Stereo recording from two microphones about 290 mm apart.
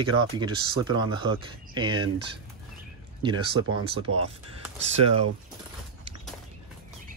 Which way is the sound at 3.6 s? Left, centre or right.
Right.